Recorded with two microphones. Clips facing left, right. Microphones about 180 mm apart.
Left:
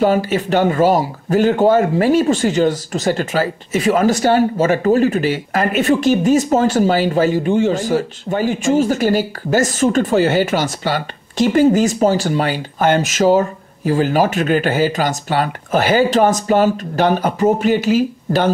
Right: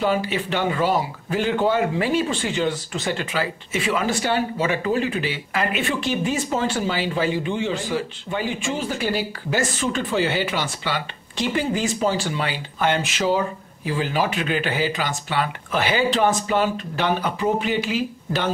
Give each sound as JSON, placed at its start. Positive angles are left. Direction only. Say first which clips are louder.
{"t": 0.0, "sound": "speech", "louder": "left 7 dB", "side_deg": 45}